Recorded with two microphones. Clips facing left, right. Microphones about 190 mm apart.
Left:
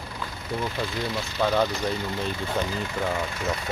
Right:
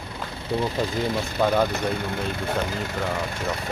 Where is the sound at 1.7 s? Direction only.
60° right (ahead or behind).